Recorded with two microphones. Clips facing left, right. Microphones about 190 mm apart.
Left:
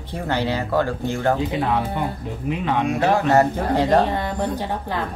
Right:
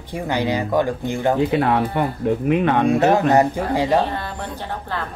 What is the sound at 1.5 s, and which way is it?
Speech, 60° right (ahead or behind).